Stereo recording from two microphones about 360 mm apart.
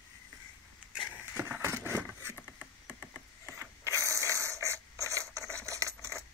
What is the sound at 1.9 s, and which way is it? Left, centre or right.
Vehicle, centre.